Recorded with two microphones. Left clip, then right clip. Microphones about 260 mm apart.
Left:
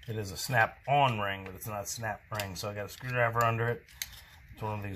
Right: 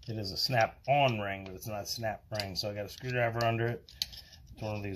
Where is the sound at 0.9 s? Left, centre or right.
Left.